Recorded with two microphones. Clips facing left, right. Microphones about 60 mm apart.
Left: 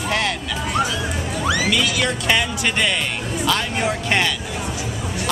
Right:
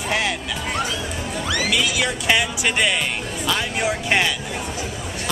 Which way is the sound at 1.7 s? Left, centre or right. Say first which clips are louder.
Left 1 dB; centre.